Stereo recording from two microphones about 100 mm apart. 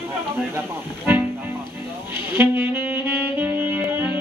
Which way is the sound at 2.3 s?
25° right (ahead or behind).